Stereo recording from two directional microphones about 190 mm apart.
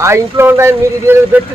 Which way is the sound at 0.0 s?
15° right (ahead or behind).